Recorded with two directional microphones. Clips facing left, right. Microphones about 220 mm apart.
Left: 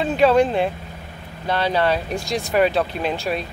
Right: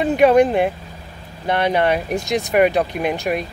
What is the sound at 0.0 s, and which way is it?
Speech, 15° right (ahead or behind).